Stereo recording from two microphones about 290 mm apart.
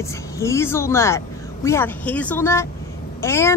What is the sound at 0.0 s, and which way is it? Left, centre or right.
Speech, centre.